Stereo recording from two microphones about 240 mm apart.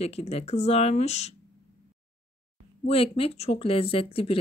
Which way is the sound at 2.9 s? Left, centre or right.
Left.